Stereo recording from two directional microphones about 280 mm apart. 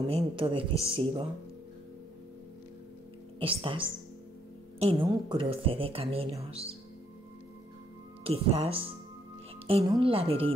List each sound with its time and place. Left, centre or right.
0.0 s speech: centre
3.3 s speech: centre
8.2 s speech: right